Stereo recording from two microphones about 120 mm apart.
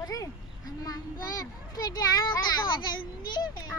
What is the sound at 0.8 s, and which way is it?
A child's voice, 30° left (ahead or behind).